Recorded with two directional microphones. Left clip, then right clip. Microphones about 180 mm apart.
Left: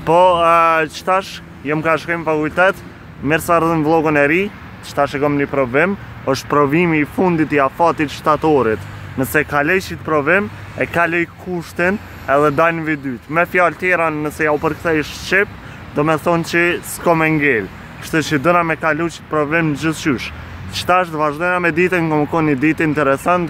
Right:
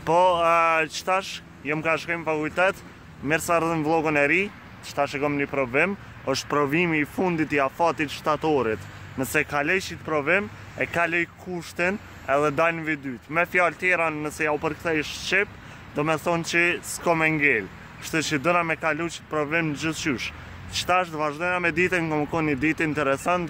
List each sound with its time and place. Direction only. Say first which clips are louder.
0.0 s speech: left 8 dB; centre (ahead or behind)